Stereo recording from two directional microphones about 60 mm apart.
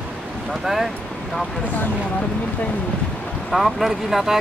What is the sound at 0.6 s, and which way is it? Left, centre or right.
Speech, centre.